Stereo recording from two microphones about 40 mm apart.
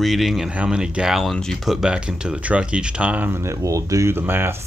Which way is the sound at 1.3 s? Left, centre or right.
Centre.